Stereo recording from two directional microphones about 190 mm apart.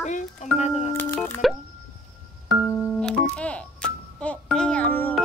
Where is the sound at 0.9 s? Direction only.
10° left (ahead or behind).